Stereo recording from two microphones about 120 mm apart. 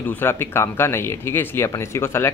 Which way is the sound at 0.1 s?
20° left (ahead or behind).